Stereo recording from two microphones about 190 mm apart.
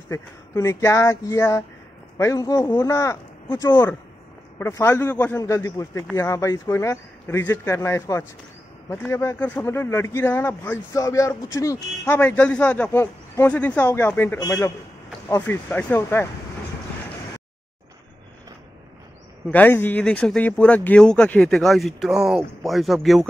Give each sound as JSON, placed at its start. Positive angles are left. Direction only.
{"t": 0.1, "sound": "speech", "side_deg": 15}
{"t": 19.5, "sound": "speech", "side_deg": 10}